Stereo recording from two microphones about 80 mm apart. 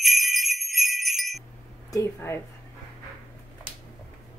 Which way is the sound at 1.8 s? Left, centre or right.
Left.